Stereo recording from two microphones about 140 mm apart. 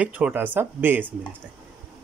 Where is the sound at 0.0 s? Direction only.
10° right (ahead or behind).